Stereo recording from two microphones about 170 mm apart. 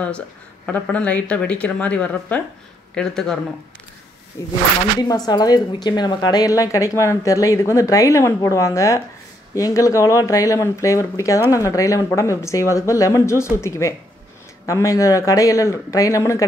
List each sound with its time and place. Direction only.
0.7 s speech: 5° left (ahead or behind)
4.4 s a woman's voice: 20° left (ahead or behind)